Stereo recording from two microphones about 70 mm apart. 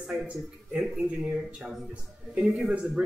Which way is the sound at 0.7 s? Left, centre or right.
Centre.